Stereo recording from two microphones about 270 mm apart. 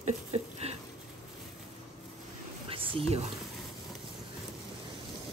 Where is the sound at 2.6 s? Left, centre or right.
Centre.